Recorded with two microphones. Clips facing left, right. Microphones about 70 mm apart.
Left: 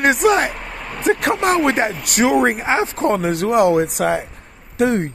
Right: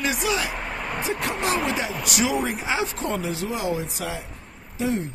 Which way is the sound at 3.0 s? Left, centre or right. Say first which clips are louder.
Left 9 dB; left.